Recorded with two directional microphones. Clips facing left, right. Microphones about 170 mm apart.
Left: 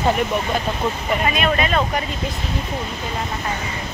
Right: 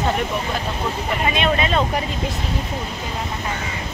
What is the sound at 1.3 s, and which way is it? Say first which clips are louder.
Speech: right 2 dB; 25° right (ahead or behind).